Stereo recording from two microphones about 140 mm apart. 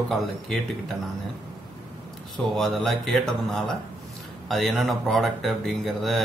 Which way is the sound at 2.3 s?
Centre (ahead or behind).